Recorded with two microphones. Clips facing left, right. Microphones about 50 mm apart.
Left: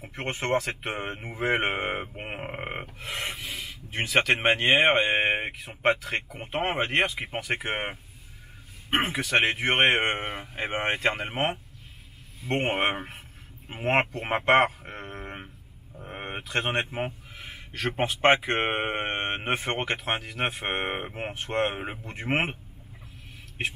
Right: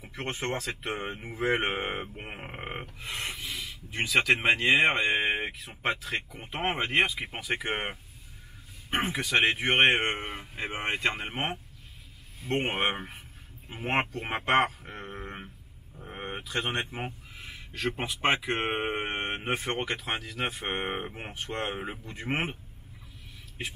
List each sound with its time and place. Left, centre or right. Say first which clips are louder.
0.1 s speech: left 5 dB; left
2.1 s speech: left 5 dB; left
3.0 s speech: left 2 dB; left
8.9 s speech: left 3 dB; left
14.2 s speech: left 4 dB; left
16.1 s speech: left 2 dB; left
18.6 s speech: left 3 dB; left